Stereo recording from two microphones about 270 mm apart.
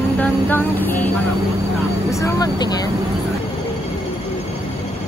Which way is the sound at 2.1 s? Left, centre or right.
Centre.